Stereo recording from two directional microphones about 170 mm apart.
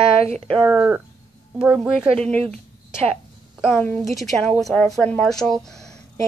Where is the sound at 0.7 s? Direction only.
10° right (ahead or behind).